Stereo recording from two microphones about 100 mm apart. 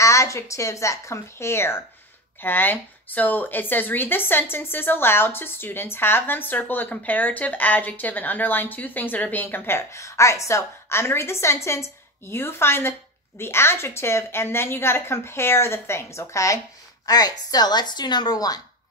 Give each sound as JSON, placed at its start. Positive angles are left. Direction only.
{"t": 0.0, "sound": "speech", "side_deg": 30}